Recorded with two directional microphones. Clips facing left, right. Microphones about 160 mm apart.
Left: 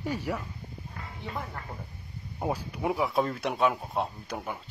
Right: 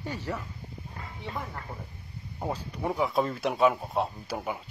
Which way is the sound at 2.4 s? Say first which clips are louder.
Left 2 dB; 10° left (ahead or behind).